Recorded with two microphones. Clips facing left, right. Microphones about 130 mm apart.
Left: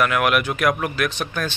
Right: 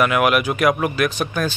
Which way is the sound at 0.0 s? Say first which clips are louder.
Right 2 dB; 5° right (ahead or behind).